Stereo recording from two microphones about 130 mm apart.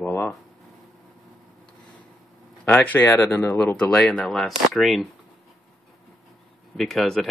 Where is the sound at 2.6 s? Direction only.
10° left (ahead or behind).